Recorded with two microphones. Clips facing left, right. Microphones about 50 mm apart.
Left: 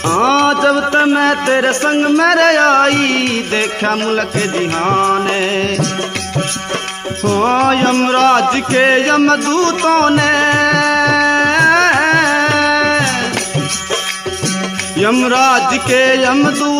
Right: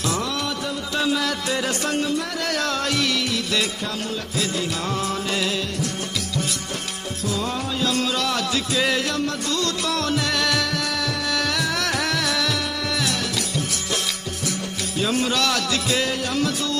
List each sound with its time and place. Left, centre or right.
0.1 s a man's voice: left
7.2 s music: left
15.0 s speech: left